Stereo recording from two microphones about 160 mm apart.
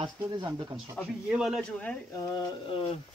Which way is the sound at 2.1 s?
20° left (ahead or behind).